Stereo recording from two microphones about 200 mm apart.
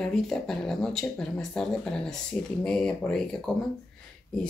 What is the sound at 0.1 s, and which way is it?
Speech, centre (ahead or behind).